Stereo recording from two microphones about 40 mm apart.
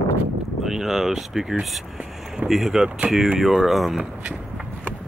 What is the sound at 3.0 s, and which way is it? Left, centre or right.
Speech, right.